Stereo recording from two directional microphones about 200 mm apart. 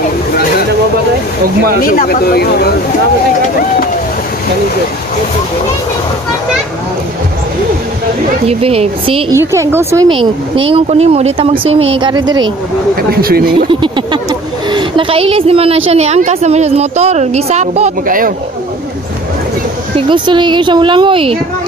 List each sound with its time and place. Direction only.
0.3 s a sound: 45° left (ahead or behind)
1.8 s speech: 45° left (ahead or behind)
8.5 s speech: 30° right (ahead or behind)
9.3 s a woman's voice: 15° right (ahead or behind)
10.0 s speech: 25° right (ahead or behind)
13.1 s speech: 50° right (ahead or behind)
13.7 s a woman's voice: 25° right (ahead or behind); by 18.3 s 45° right (ahead or behind)
20.0 s speech: 25° right (ahead or behind)